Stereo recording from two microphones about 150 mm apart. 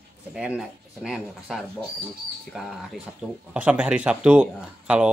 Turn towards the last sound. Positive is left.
turn(degrees=-10)  # may be behind; listen again after turning